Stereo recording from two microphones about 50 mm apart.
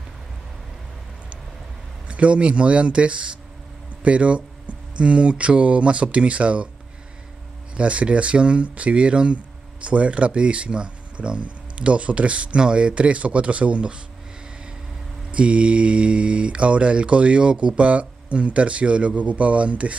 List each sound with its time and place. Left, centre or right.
2.0 s speech: right
7.7 s speech: right
15.3 s speech: right